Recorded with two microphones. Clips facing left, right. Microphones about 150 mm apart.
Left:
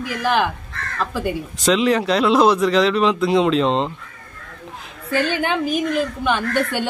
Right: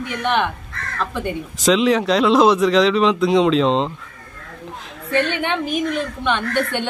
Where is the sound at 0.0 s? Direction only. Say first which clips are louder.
Left 1 dB; 5° left (ahead or behind).